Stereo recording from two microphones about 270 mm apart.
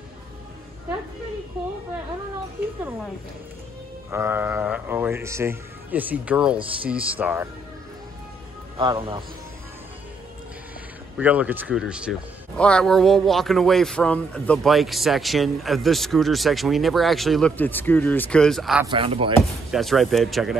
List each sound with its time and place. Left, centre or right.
4.1 s speech: centre
8.7 s speech: centre
11.1 s speech: centre
18.9 s speech: centre
19.7 s speech: centre